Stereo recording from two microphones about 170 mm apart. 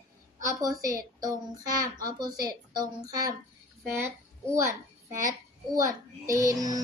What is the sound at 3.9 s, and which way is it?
Speech, 15° right (ahead or behind).